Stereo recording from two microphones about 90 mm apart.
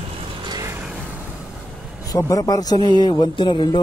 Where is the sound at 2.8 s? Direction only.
50° left (ahead or behind).